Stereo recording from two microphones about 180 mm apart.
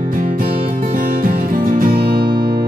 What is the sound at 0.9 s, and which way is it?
Music, 55° right (ahead or behind).